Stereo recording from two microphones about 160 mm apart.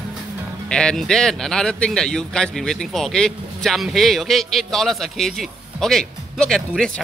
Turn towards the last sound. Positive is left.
turn(degrees=5)  # may be behind; listen again after turning